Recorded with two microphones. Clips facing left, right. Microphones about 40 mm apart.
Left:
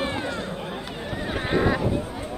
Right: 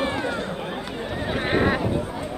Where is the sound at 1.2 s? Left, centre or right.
Right.